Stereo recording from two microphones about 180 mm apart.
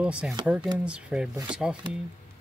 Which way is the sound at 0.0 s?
5° right (ahead or behind).